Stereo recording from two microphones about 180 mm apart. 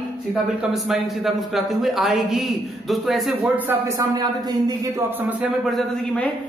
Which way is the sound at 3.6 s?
15° right (ahead or behind).